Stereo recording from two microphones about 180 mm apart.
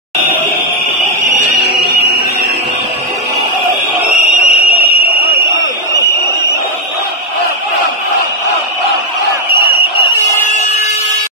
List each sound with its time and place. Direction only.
4.2 s fire alarm: 35° left (ahead or behind)